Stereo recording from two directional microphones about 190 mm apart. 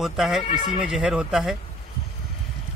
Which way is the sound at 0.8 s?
5° right (ahead or behind).